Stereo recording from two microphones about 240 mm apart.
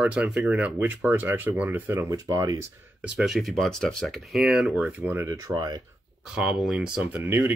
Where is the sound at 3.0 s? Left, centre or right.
Centre.